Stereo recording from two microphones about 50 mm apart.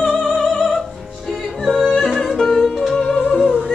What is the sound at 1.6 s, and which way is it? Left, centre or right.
Music, centre.